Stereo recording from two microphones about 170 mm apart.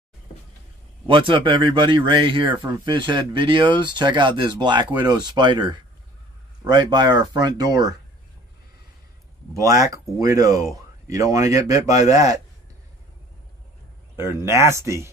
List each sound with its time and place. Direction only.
1.0 s speech: 30° right (ahead or behind)
9.5 s speech: 20° right (ahead or behind)
14.4 s speech: 15° right (ahead or behind)